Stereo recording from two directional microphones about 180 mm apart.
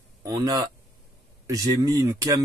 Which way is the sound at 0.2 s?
20° right (ahead or behind).